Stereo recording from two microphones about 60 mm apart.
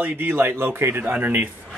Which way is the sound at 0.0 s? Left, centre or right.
Right.